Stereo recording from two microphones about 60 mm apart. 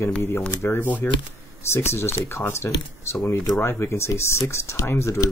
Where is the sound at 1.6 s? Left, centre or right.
Left.